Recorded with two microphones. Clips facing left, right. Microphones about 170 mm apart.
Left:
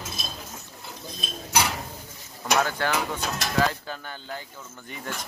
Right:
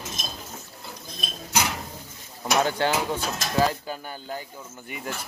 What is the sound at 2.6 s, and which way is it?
Speech, 25° right (ahead or behind).